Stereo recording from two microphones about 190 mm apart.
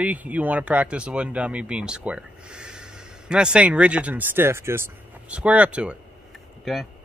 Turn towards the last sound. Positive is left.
turn(degrees=0)  # may be behind; listen again after turning